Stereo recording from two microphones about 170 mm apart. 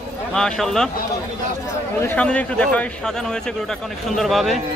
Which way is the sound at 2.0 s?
10° left (ahead or behind).